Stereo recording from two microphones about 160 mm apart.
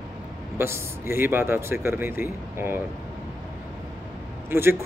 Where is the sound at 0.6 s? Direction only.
15° right (ahead or behind).